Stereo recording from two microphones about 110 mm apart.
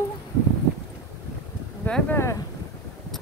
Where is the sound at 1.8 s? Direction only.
15° left (ahead or behind).